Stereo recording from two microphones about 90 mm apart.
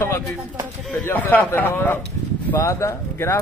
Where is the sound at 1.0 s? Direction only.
20° left (ahead or behind).